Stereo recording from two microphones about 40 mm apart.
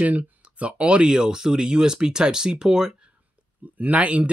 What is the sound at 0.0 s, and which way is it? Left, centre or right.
Speech, right.